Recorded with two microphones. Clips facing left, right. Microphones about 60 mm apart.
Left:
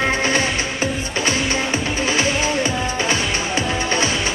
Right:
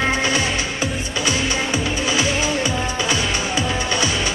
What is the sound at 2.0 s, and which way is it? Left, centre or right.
Music, left.